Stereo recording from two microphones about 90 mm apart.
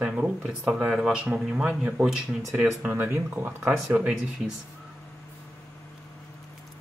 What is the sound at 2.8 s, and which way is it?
Speech, 25° right (ahead or behind).